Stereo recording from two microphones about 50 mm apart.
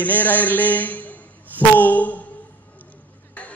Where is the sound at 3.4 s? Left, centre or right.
Left.